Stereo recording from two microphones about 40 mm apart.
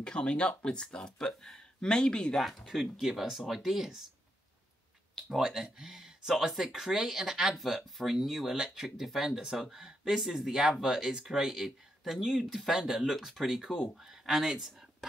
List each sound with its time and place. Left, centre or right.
0.0 s speech: left
2.7 s speech: centre
5.4 s speech: centre
7.5 s speech: centre